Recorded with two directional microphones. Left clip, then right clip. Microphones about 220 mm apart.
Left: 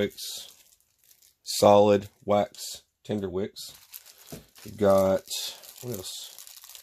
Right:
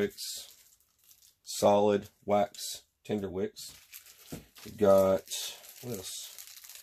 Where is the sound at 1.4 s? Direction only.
45° left (ahead or behind).